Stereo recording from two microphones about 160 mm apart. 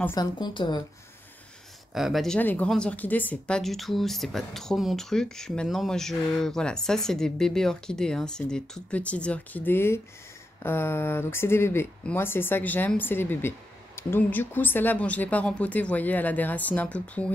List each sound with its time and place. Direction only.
0.0 s speech: 20° left (ahead or behind)
2.0 s speech: centre (ahead or behind)